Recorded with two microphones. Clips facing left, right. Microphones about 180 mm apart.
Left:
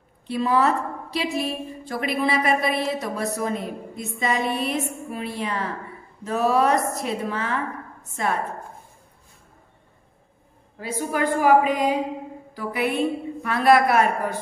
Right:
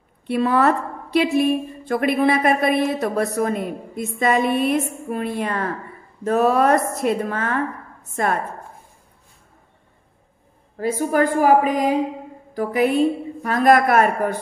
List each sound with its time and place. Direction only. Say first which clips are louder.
0.3 s a woman's voice: right 3 dB; 60° right (ahead or behind)
10.8 s a woman's voice: right 6 dB; 45° right (ahead or behind)